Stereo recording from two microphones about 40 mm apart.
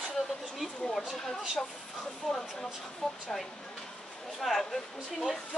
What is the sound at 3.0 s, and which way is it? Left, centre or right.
Speech, centre.